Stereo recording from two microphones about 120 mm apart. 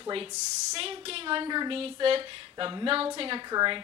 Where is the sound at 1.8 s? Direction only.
50° right (ahead or behind).